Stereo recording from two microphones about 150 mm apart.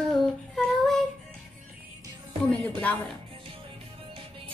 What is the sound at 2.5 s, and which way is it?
Speech, 10° left (ahead or behind).